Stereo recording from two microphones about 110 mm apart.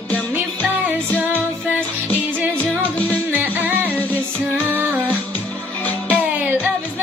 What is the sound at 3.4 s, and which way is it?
Music, 15° right (ahead or behind).